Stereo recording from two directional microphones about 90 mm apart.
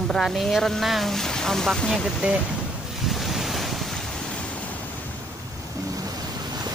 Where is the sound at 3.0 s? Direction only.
Centre (ahead or behind).